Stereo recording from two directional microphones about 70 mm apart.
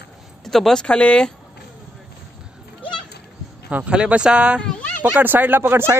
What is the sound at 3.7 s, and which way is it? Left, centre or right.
Speech, centre.